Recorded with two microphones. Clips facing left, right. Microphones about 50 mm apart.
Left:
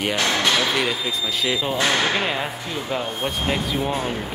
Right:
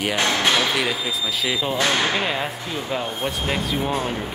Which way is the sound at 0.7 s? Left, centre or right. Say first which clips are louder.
Even; centre.